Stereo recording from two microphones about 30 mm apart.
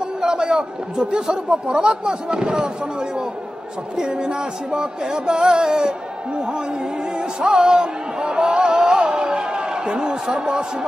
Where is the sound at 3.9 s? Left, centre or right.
Right.